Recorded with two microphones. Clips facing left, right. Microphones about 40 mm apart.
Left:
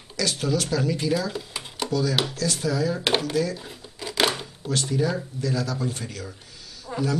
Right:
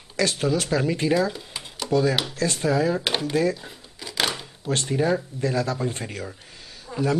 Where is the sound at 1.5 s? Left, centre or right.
Centre.